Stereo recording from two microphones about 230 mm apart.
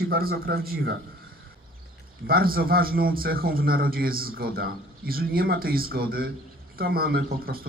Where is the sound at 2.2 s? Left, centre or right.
Right.